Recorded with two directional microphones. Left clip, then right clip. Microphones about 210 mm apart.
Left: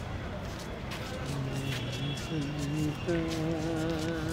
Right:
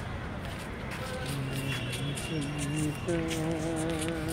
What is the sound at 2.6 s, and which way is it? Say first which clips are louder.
Music: even; centre (ahead or behind).